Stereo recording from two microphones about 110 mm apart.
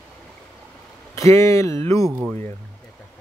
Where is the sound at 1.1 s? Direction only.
30° left (ahead or behind).